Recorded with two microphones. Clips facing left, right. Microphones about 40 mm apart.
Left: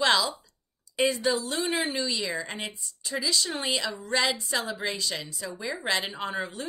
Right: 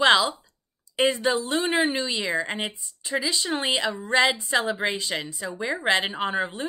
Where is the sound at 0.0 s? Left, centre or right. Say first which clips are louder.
Right 5 dB; right.